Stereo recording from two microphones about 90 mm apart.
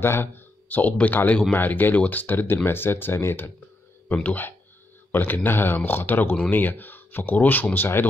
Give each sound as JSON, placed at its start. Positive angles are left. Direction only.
{"t": 0.0, "sound": "speech", "side_deg": 25}